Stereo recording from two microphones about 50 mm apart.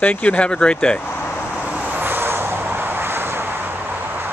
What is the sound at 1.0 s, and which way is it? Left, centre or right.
Speech, left.